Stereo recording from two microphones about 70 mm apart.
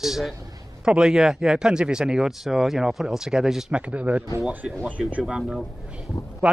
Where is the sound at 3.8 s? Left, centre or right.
Centre.